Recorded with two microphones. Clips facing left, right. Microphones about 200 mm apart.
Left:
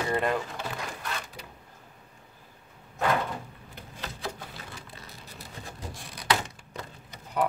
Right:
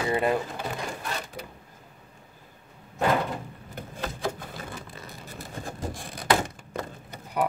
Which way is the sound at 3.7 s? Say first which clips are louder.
Right 7 dB; 50° right (ahead or behind).